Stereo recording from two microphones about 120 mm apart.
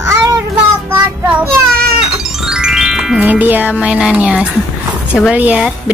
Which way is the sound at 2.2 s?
5° right (ahead or behind).